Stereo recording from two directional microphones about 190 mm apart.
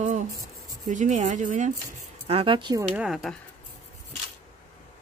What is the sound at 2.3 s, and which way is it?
Speech, 30° right (ahead or behind).